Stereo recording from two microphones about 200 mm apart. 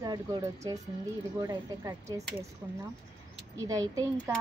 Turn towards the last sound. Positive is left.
turn(degrees=-15)  # may be behind; listen again after turning